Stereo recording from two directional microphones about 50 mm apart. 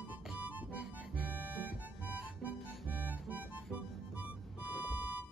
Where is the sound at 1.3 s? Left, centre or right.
Right.